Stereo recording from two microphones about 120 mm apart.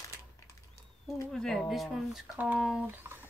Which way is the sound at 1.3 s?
5° left (ahead or behind).